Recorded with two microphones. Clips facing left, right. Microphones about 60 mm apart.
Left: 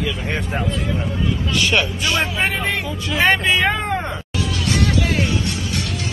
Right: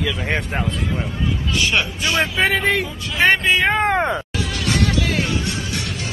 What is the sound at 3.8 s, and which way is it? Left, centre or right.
Meow, right.